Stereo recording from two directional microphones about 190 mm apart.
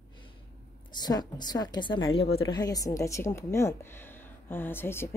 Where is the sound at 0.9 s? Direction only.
20° left (ahead or behind).